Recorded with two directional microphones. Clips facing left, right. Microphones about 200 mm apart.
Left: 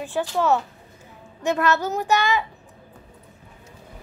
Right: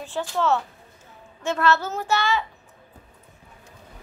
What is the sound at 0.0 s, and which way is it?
Speech, 15° left (ahead or behind).